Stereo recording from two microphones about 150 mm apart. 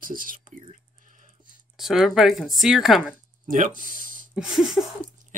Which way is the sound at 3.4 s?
60° right (ahead or behind).